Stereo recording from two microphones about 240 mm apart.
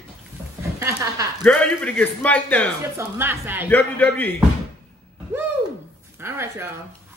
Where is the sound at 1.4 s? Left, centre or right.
Centre.